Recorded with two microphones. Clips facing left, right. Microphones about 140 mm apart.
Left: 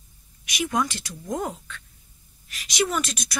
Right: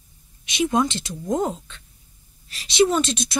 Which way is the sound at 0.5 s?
25° right (ahead or behind).